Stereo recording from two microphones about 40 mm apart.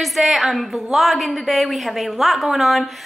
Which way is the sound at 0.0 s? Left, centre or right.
Centre.